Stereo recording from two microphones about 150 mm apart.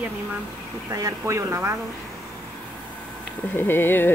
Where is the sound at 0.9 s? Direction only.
20° right (ahead or behind).